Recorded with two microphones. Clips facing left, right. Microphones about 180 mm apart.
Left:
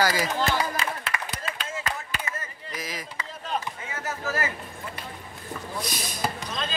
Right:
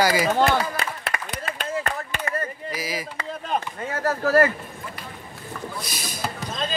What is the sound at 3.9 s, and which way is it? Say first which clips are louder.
Speech: right 11 dB; 60° right (ahead or behind).